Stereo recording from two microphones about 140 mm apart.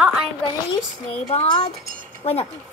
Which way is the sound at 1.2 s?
45° left (ahead or behind).